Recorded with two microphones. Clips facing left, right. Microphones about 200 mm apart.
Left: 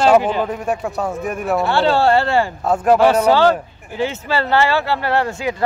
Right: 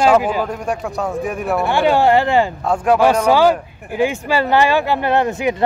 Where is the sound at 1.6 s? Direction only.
15° right (ahead or behind).